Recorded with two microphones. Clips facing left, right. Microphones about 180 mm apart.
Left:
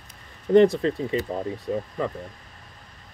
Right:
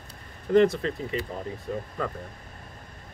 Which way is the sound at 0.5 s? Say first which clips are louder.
Left 4 dB; 30° left (ahead or behind).